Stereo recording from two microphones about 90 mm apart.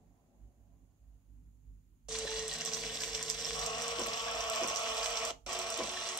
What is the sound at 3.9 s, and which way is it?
Water, 50° left (ahead or behind).